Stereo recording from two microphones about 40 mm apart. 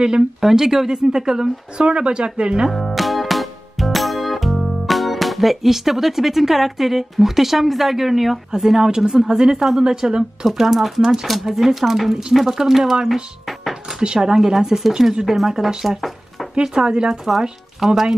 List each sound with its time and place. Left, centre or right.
0.4 s speech: centre
2.7 s music: centre
8.5 s speech: centre
12.1 s speech: centre
12.4 s speech: centre
13.8 s speech: centre
15.7 s speech: centre
17.2 s speech: centre